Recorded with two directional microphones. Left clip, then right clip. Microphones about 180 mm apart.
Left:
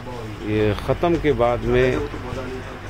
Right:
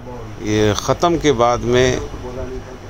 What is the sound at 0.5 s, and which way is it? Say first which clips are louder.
Speech: right 5 dB; 15° right (ahead or behind).